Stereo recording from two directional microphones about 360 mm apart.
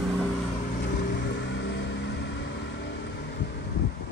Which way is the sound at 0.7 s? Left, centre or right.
Left.